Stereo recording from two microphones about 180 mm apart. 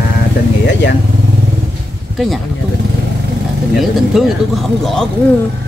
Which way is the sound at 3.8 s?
Centre (ahead or behind).